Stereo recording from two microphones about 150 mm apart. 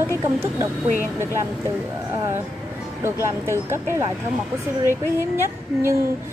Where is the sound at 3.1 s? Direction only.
15° right (ahead or behind).